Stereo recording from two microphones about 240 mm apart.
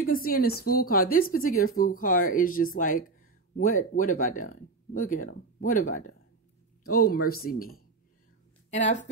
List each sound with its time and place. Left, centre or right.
0.0 s speech: left